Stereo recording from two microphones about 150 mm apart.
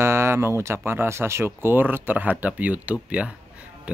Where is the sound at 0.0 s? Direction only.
20° right (ahead or behind).